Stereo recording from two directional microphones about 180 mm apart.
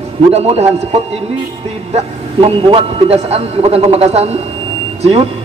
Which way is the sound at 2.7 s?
35° right (ahead or behind).